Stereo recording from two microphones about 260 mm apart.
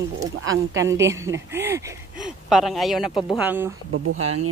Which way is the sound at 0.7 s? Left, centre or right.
Centre.